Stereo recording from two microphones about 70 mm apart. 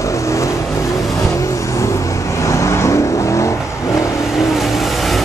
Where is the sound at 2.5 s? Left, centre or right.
Left.